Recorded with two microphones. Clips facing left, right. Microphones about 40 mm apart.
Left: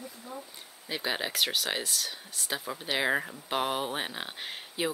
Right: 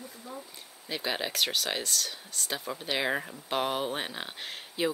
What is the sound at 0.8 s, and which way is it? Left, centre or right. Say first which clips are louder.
Speech: even; centre.